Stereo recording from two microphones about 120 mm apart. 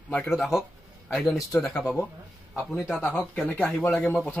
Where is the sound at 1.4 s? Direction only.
25° left (ahead or behind).